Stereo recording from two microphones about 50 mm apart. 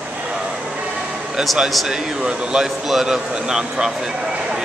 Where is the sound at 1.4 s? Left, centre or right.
Centre.